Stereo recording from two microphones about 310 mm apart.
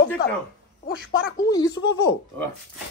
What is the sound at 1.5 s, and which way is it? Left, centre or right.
Speech, centre.